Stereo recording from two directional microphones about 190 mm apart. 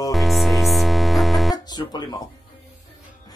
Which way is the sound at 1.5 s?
20° left (ahead or behind).